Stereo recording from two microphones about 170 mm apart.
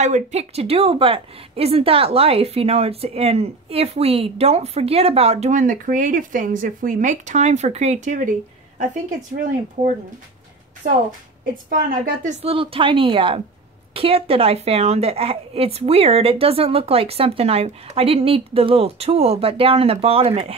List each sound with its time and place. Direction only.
0.0 s a woman's voice: 40° right (ahead or behind)
11.7 s a woman's voice: 50° right (ahead or behind); by 20.5 s 35° right (ahead or behind)